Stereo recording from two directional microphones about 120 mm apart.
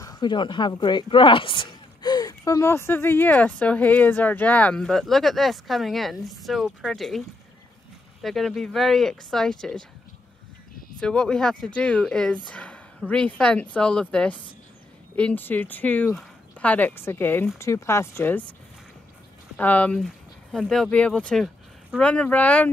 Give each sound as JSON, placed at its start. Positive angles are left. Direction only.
{"t": 0.0, "sound": "speech", "side_deg": 35}
{"t": 11.0, "sound": "speech", "side_deg": 5}
{"t": 19.5, "sound": "speech", "side_deg": 15}